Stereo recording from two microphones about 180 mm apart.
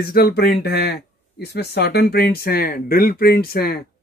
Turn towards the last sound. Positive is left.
turn(degrees=55)  # may be behind; listen again after turning